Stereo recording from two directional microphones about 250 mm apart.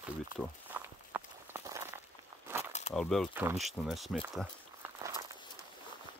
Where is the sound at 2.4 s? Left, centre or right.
Centre.